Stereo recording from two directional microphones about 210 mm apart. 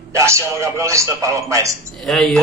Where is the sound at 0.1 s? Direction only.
15° right (ahead or behind).